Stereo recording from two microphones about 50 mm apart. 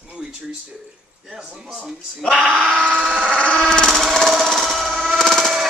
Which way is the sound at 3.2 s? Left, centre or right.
Left.